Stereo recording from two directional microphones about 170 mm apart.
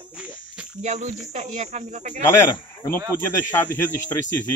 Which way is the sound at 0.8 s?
40° right (ahead or behind).